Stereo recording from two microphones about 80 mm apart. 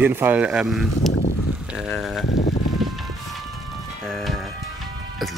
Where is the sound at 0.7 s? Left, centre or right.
Centre.